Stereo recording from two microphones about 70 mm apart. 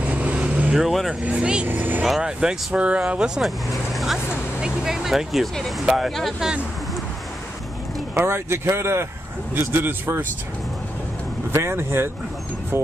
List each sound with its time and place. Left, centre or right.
0.0 s vehicle: centre
0.7 s speech: centre
1.2 s speech: centre
1.7 s speech: right
2.0 s speech: centre
8.1 s speech: right
11.5 s speech: right